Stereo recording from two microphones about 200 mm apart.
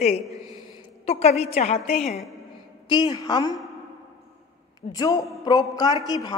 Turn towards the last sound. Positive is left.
turn(degrees=20)  # may be behind; listen again after turning